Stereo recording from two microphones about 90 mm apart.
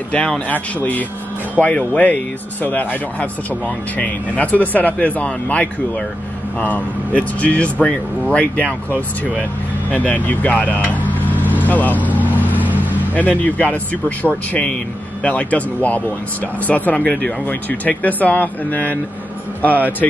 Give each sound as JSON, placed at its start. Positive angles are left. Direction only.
{"t": 0.1, "sound": "speech", "side_deg": 10}
{"t": 9.8, "sound": "speech", "side_deg": 15}
{"t": 10.9, "sound": "microwave oven", "side_deg": 20}
{"t": 11.6, "sound": "vehicle", "side_deg": 20}
{"t": 12.5, "sound": "vehicle", "side_deg": -20}
{"t": 13.1, "sound": "speech", "side_deg": 15}